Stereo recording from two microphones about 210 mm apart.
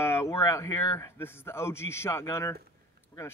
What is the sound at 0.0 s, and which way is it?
A man's voice, 10° left (ahead or behind).